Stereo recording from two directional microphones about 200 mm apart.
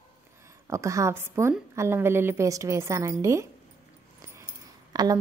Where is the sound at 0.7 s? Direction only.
15° right (ahead or behind).